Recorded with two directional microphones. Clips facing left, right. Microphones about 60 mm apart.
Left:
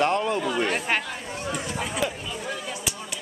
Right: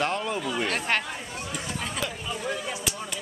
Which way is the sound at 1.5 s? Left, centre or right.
Centre.